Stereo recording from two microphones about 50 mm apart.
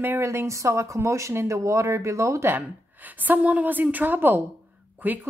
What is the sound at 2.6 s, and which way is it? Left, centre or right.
A woman's voice, right.